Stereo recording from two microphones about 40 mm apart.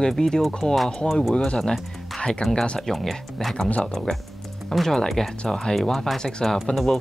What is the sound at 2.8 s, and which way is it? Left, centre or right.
Speech, centre.